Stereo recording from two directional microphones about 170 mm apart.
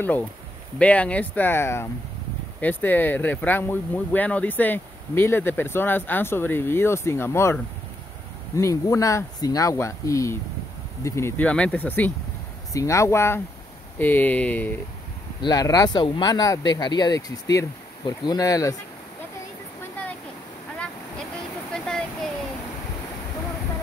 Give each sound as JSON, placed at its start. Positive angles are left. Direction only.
{"t": 0.7, "sound": "speech", "side_deg": 5}
{"t": 8.5, "sound": "speech", "side_deg": 20}
{"t": 15.4, "sound": "speech", "side_deg": 20}
{"t": 21.7, "sound": "a sound", "side_deg": 0}